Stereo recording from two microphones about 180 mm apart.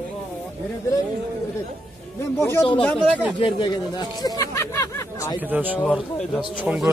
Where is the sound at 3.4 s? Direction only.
25° left (ahead or behind).